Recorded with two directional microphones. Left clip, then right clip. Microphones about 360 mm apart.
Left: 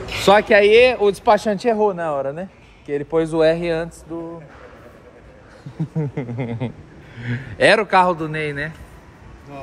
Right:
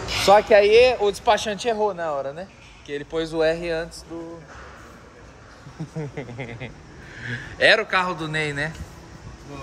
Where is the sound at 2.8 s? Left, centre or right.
Centre.